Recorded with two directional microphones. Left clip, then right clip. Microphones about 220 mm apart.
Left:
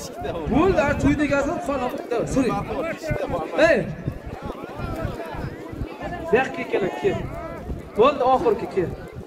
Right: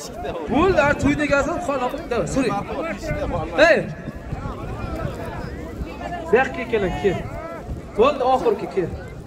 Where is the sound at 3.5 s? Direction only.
25° right (ahead or behind).